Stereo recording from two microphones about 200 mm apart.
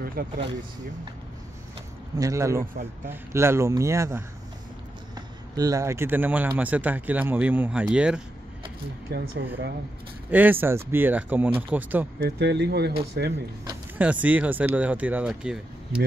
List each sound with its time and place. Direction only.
0.0 s speech: 45° right (ahead or behind)
2.1 s speech: 15° right (ahead or behind)
9.1 s speech: 55° right (ahead or behind)
10.3 s speech: 10° right (ahead or behind)
12.2 s speech: 55° right (ahead or behind)
13.7 s speech: 10° right (ahead or behind)